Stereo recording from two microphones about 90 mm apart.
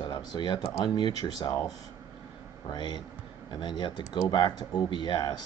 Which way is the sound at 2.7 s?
55° left (ahead or behind).